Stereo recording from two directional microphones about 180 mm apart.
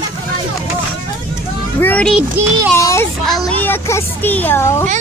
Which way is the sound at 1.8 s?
10° left (ahead or behind).